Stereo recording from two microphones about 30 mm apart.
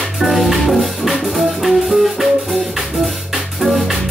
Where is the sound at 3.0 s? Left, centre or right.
Centre.